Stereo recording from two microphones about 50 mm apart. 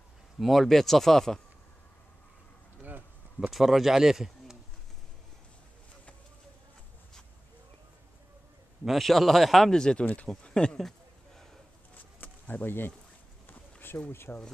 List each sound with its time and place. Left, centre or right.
0.4 s speech: centre
3.3 s speech: centre
8.8 s speech: centre
9.7 s speech: centre
10.8 s a sound: centre
12.2 s a sound: left
13.5 s bee: left